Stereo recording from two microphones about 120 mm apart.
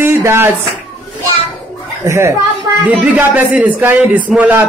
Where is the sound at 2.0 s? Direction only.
25° right (ahead or behind).